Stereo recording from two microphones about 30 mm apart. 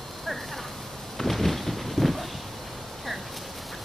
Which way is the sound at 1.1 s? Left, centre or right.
Centre.